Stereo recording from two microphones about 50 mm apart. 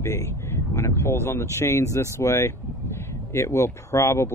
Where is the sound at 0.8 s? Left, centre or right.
Left.